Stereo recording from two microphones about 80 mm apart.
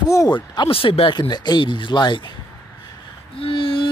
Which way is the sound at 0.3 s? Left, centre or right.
Left.